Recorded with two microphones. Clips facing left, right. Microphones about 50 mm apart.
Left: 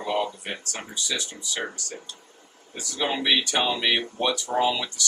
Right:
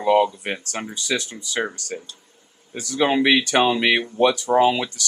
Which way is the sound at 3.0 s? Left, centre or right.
Right.